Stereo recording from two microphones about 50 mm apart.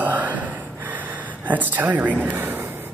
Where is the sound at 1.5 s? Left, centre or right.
Right.